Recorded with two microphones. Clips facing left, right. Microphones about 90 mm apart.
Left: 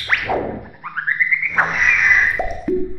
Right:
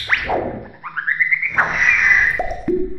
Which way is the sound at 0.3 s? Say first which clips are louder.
Even; centre (ahead or behind).